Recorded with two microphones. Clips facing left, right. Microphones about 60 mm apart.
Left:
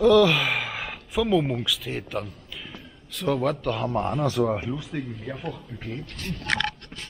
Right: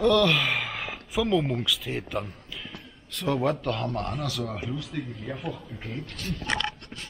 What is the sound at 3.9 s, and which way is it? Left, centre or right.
A man's voice, left.